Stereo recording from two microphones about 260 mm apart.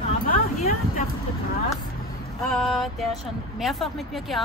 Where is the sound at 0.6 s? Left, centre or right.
Left.